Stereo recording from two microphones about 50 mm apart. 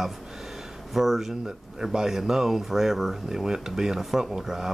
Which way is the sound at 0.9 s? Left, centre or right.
Centre.